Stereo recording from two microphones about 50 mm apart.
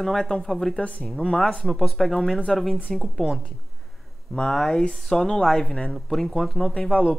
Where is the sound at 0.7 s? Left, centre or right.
Left.